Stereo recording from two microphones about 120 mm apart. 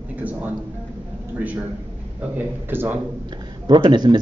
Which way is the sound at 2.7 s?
15° right (ahead or behind).